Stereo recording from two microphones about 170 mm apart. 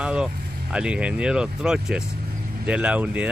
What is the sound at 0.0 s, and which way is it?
Speech, 5° right (ahead or behind).